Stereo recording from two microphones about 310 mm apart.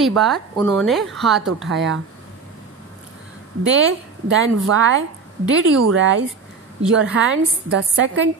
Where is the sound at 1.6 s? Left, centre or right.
Right.